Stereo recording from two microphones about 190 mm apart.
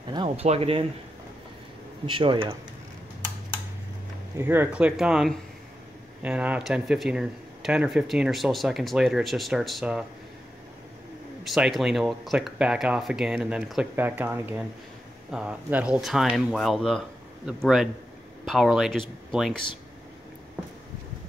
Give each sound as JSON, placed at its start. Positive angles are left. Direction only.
{"t": 0.1, "sound": "speech", "side_deg": -30}
{"t": 2.0, "sound": "speech", "side_deg": -25}
{"t": 4.4, "sound": "speech", "side_deg": -10}
{"t": 11.4, "sound": "speech", "side_deg": 0}